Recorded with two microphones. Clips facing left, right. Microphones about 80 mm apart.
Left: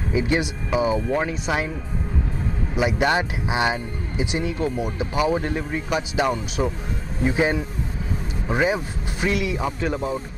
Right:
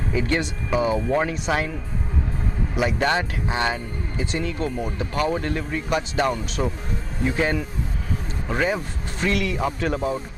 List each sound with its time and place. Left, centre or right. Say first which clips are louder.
0.1 s speech: left 2 dB; centre
2.7 s speech: left 1 dB; centre
7.2 s speech: left 2 dB; centre